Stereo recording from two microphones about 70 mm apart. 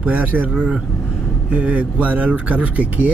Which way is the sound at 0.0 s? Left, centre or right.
Right.